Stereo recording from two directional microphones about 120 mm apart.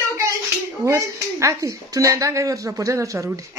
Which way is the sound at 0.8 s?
25° right (ahead or behind).